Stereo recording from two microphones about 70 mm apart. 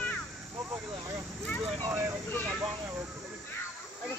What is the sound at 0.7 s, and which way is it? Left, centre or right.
Speech, right.